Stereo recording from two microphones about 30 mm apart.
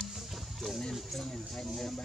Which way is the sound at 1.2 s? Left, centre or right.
Centre.